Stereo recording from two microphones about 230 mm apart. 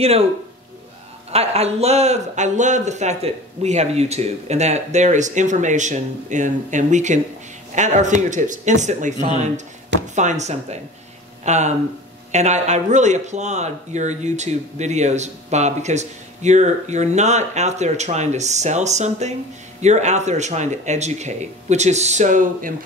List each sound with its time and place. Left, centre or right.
0.0 s speech: right
1.3 s a man's voice: right